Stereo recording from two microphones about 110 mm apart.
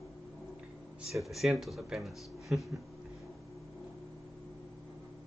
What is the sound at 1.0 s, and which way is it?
Speech, centre (ahead or behind).